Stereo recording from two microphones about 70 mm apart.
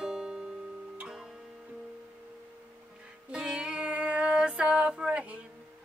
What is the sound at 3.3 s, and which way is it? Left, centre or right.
Music, centre.